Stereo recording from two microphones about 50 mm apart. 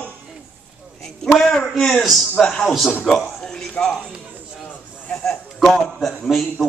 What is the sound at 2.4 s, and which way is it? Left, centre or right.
Speech, centre.